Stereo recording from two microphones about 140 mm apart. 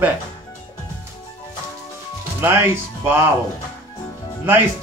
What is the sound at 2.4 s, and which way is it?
Speech, 15° right (ahead or behind).